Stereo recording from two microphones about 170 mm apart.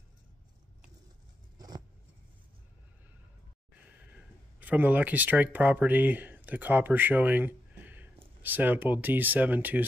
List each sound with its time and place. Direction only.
3.8 s speech: 10° right (ahead or behind)